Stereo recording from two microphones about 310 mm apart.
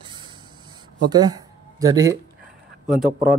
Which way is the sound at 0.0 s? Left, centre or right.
Centre.